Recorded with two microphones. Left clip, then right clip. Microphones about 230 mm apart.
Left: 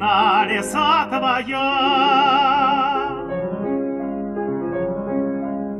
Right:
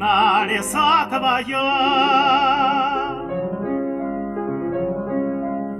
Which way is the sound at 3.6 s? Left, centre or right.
Left.